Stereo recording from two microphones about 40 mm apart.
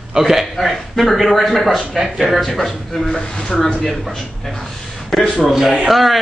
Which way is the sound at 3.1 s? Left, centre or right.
Centre.